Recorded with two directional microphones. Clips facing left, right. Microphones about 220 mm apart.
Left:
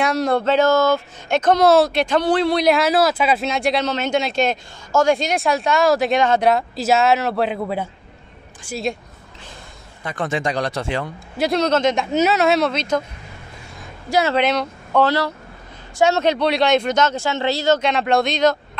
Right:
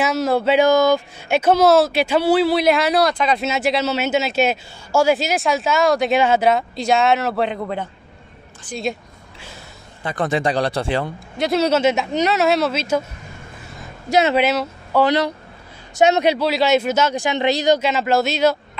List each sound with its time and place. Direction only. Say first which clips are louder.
0.0 s a man's voice: even; 5° right (ahead or behind)
10.0 s speech: right 3 dB; 35° right (ahead or behind)
11.3 s a man's voice: right 1 dB; centre (ahead or behind)
14.3 s speech: right 1 dB; 5° right (ahead or behind)
15.0 s a man's voice: right 2 dB; 15° right (ahead or behind)
16.3 s speech: even; 5° right (ahead or behind)